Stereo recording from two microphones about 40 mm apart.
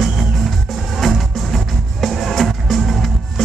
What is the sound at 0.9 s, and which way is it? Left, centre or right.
Music, centre.